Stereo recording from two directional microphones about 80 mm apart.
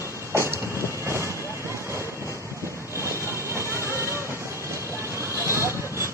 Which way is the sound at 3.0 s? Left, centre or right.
Right.